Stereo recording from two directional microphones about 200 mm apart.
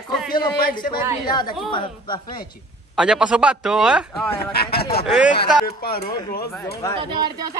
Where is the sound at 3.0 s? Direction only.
5° right (ahead or behind).